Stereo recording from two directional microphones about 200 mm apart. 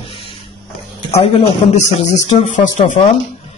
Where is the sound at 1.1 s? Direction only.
30° left (ahead or behind).